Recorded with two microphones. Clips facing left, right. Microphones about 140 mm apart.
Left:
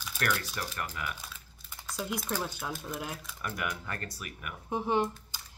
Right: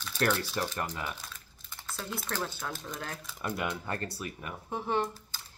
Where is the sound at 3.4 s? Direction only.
25° right (ahead or behind).